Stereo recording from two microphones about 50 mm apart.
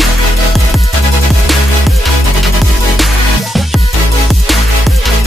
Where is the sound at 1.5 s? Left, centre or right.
Centre.